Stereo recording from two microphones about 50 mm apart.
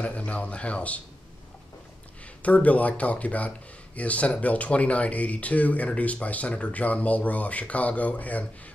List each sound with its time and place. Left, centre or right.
0.0 s speech: left
2.4 s speech: left